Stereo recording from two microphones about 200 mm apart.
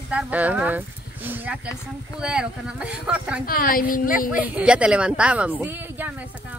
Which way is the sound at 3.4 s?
45° left (ahead or behind).